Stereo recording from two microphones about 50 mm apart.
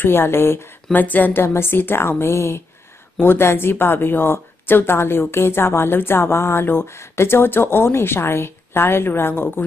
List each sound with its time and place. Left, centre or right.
0.0 s a woman's voice: left
0.9 s a woman's voice: left
1.3 s a woman's voice: left
3.2 s a woman's voice: left